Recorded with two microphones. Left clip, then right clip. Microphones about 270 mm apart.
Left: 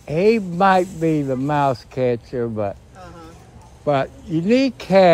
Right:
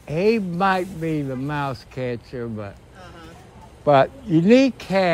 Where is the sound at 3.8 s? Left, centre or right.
Centre.